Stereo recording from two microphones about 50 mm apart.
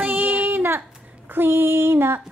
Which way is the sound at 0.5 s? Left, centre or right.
Right.